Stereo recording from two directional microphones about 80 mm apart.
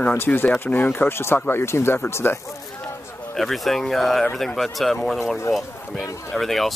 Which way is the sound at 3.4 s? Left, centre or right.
Centre.